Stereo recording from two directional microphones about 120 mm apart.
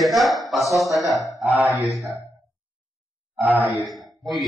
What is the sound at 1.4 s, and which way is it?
Speech, 10° right (ahead or behind).